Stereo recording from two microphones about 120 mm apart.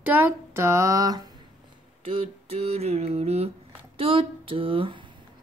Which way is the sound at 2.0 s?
55° right (ahead or behind).